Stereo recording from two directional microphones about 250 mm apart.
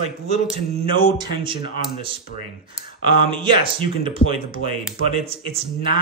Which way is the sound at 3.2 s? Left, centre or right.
Centre.